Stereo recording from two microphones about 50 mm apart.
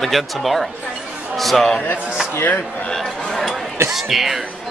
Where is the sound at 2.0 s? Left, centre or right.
Centre.